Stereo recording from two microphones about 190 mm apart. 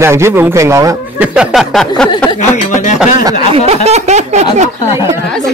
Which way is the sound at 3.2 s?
30° right (ahead or behind).